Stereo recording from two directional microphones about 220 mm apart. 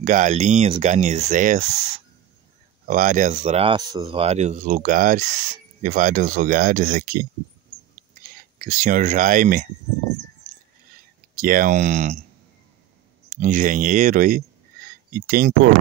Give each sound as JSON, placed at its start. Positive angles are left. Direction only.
{"t": 0.0, "sound": "speech", "side_deg": -35}
{"t": 8.5, "sound": "speech", "side_deg": -35}
{"t": 11.3, "sound": "speech", "side_deg": -40}
{"t": 13.3, "sound": "speech", "side_deg": -40}